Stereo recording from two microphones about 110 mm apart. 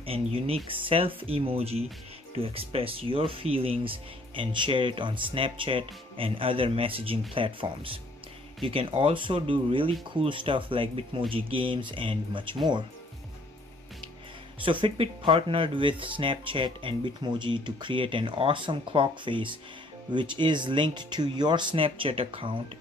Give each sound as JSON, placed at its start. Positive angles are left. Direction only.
{"t": 0.0, "sound": "speech", "side_deg": -60}
{"t": 14.6, "sound": "speech", "side_deg": -50}